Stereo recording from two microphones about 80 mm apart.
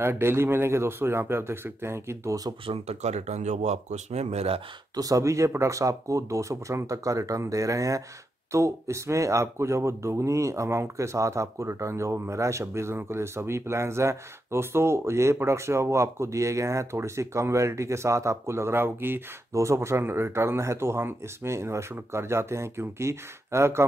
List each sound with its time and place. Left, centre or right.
0.0 s speech: right
4.9 s speech: right
19.5 s speech: right